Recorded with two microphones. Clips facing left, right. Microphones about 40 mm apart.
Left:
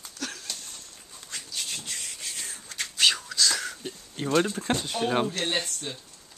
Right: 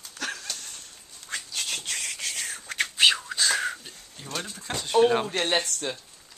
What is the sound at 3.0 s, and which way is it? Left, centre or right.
Whispering, centre.